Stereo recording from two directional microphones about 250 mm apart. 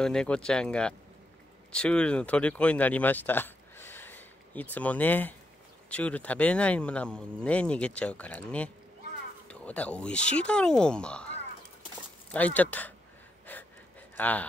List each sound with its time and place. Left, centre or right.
0.0 s speech: centre
13.5 s gasp: centre
14.1 s speech: centre